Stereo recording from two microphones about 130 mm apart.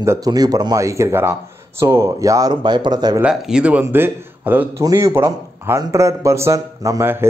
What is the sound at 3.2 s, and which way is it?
A man's voice, 5° right (ahead or behind).